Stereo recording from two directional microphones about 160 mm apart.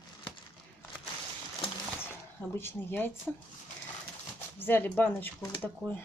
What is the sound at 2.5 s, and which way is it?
Speech, 15° left (ahead or behind).